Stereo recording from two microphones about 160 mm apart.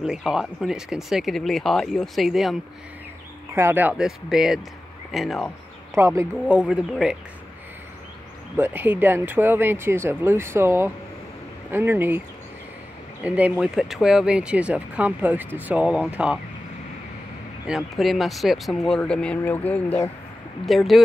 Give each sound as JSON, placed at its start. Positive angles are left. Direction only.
{"t": 0.0, "sound": "speech", "side_deg": -5}
{"t": 3.5, "sound": "speech", "side_deg": -10}
{"t": 5.9, "sound": "speech", "side_deg": -15}
{"t": 6.5, "sound": "speech", "side_deg": -5}
{"t": 8.5, "sound": "speech", "side_deg": -10}
{"t": 13.2, "sound": "speech", "side_deg": -5}
{"t": 17.6, "sound": "speech", "side_deg": 0}